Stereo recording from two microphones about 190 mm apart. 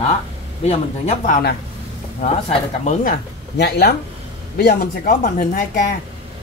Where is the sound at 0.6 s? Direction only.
35° left (ahead or behind).